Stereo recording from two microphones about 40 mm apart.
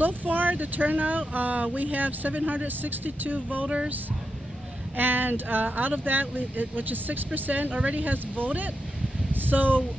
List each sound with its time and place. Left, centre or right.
0.0 s speech: right
3.6 s speech: right
4.9 s speech: right
9.3 s a sound: right